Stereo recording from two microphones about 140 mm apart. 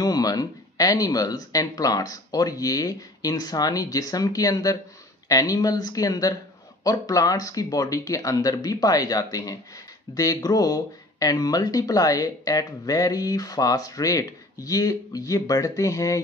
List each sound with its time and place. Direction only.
0.0 s speech: 25° left (ahead or behind)